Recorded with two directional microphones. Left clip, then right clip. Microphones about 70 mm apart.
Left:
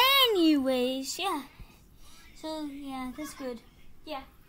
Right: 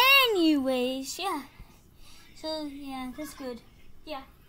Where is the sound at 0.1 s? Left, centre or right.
Centre.